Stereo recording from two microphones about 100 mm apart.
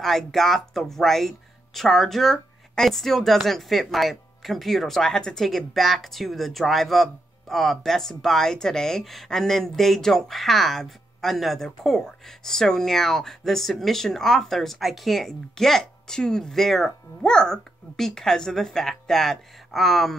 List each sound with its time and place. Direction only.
0.0 s speech: 5° left (ahead or behind)